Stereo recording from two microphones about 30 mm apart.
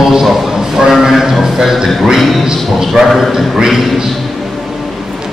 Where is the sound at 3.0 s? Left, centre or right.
Centre.